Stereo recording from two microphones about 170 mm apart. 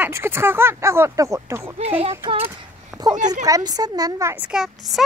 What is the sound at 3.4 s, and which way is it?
Speech, 20° right (ahead or behind).